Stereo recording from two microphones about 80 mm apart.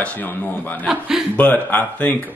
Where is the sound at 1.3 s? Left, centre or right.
Centre.